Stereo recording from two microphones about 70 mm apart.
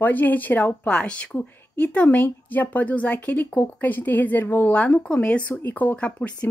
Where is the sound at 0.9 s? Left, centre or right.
Centre.